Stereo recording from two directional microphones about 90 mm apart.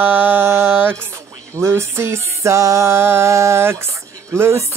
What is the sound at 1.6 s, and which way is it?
Music, 30° right (ahead or behind).